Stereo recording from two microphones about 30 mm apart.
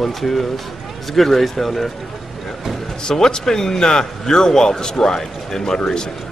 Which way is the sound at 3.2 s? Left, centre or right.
Left.